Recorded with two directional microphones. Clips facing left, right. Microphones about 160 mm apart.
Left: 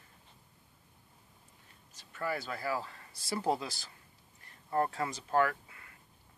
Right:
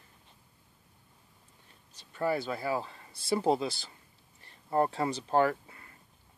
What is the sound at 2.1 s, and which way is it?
Speech, 25° right (ahead or behind).